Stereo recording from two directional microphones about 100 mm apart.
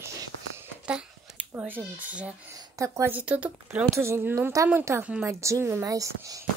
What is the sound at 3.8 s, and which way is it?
Speech, 30° right (ahead or behind).